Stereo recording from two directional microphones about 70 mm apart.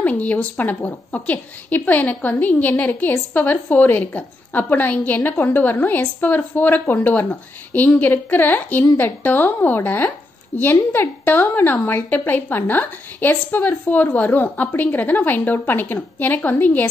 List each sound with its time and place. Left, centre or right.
0.0 s a woman's voice: left